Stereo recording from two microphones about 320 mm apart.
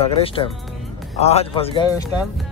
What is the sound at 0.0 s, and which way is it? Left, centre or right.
A man's voice, centre.